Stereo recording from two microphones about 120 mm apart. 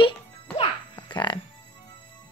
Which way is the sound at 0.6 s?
40° left (ahead or behind).